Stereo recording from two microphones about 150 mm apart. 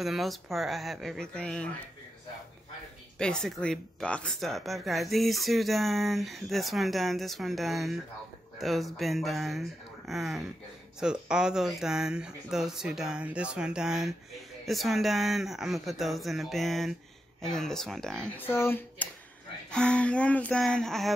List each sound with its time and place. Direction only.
0.0 s speech: centre (ahead or behind)
3.2 s speech: 5° left (ahead or behind)
18.5 s speech: 15° left (ahead or behind)